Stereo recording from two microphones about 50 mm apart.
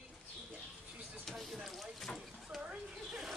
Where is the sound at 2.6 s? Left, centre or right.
Centre.